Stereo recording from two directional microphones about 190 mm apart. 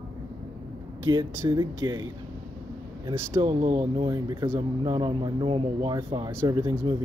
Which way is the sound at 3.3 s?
25° right (ahead or behind).